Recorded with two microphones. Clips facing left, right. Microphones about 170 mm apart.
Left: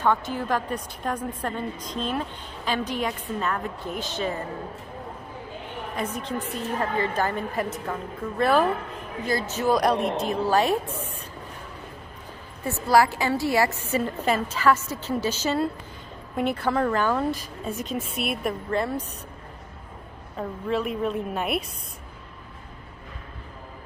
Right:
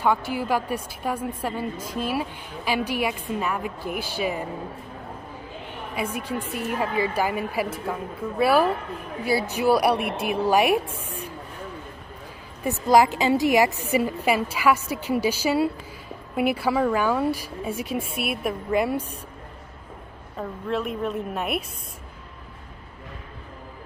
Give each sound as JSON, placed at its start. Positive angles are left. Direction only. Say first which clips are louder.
{"t": 0.0, "sound": "a woman's voice", "louder": "right 1 dB", "side_deg": -10}
{"t": 5.9, "sound": "a woman's voice", "louder": "right 2 dB", "side_deg": -10}
{"t": 12.6, "sound": "a woman's voice", "louder": "right 2 dB", "side_deg": -15}
{"t": 20.3, "sound": "a woman's voice", "louder": "left 1 dB", "side_deg": 0}